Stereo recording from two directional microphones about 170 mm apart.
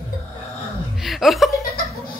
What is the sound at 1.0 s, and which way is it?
Speech, centre (ahead or behind).